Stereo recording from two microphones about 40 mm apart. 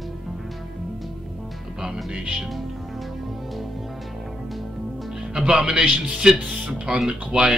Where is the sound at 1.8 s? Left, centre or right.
Centre.